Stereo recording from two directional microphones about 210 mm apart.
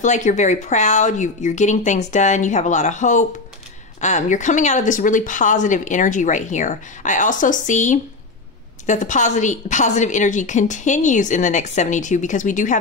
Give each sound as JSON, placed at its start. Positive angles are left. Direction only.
{"t": 0.0, "sound": "speech", "side_deg": 35}